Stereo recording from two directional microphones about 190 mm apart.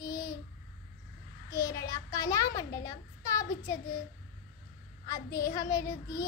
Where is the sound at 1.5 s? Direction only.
55° left (ahead or behind).